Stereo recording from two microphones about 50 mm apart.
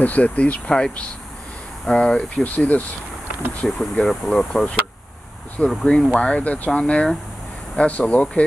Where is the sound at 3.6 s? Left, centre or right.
Centre.